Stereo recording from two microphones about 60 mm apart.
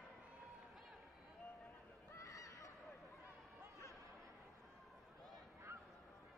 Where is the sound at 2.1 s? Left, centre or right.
Left.